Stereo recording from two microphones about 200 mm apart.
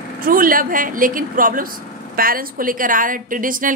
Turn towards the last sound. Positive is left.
turn(degrees=-45)  # may be behind; listen again after turning